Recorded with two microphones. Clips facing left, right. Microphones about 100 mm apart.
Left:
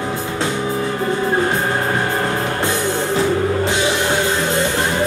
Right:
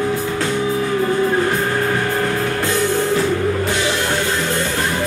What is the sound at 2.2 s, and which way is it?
Music, 25° left (ahead or behind).